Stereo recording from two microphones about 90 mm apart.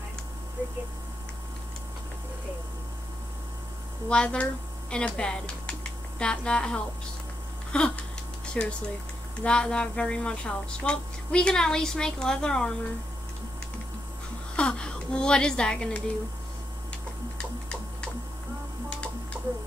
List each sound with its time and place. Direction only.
4.1 s a woman's voice: 10° left (ahead or behind)
7.7 s a sound: 10° left (ahead or behind)
8.6 s a woman's voice: 15° left (ahead or behind)
14.5 s a woman's voice: 10° left (ahead or behind)
17.4 s a sound: 10° left (ahead or behind)
19.4 s music: 15° right (ahead or behind)